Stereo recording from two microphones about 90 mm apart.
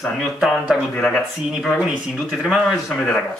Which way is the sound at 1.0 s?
15° left (ahead or behind).